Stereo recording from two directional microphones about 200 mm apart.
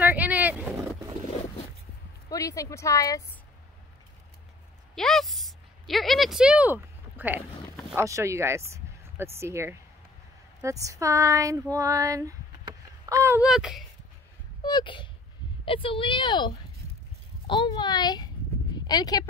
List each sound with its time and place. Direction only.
0.0 s vehicle: 10° right (ahead or behind)
2.2 s a woman's voice: 15° left (ahead or behind)
4.9 s speech: centre (ahead or behind)
14.6 s speech: 20° left (ahead or behind)